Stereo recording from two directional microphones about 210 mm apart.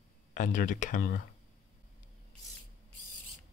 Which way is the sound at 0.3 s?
40° left (ahead or behind).